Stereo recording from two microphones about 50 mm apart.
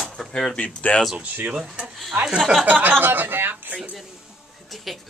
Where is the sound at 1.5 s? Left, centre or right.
Centre.